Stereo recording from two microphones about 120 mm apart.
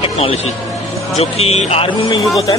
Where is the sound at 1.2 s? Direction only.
60° left (ahead or behind).